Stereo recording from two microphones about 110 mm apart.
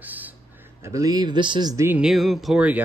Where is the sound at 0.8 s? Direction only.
30° right (ahead or behind); by 1.7 s 45° right (ahead or behind).